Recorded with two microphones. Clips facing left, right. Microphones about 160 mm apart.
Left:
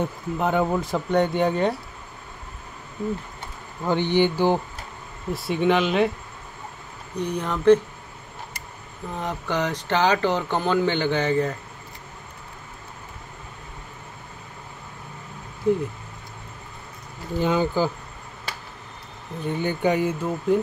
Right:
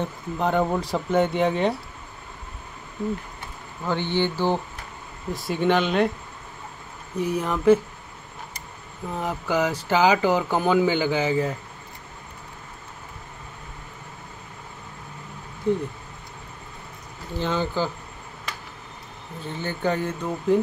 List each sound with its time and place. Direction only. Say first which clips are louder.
0.0 s speech: left 1 dB; 5° left (ahead or behind)
3.8 s speech: left 4 dB; 15° left (ahead or behind)
5.3 s speech: left 1 dB; centre (ahead or behind)
7.2 s speech: right 2 dB; 5° right (ahead or behind)
9.2 s speech: right 2 dB; 5° right (ahead or behind)
15.7 s speech: left 2 dB; 5° left (ahead or behind)
17.4 s speech: left 3 dB; 10° left (ahead or behind)
19.4 s speech: left 4 dB; 15° left (ahead or behind)